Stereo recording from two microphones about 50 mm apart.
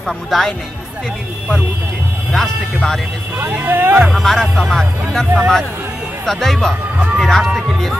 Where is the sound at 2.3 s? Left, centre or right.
Centre.